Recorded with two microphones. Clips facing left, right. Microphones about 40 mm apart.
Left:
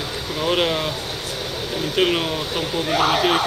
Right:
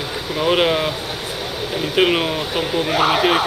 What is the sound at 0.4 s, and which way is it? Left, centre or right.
Speech, centre.